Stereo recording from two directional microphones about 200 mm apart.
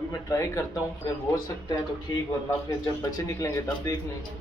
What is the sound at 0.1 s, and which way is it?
Speech, 15° left (ahead or behind).